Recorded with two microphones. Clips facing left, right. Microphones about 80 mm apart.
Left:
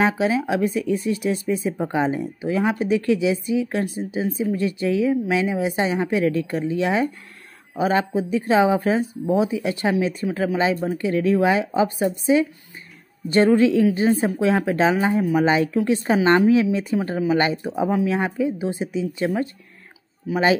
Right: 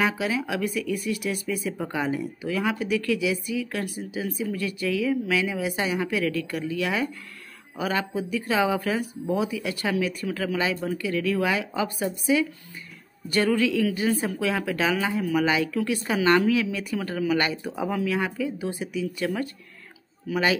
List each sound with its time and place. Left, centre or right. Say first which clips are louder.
0.0 s speech: left 5 dB; left